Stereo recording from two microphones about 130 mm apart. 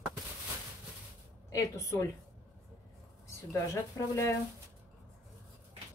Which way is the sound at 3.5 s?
20° left (ahead or behind).